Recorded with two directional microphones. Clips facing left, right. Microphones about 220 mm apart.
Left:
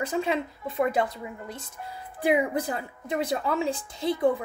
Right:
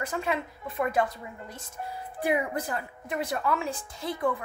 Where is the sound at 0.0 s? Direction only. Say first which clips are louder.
Left 4 dB; 25° left (ahead or behind).